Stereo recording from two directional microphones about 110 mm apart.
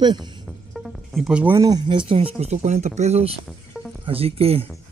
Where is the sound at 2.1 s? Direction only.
70° right (ahead or behind).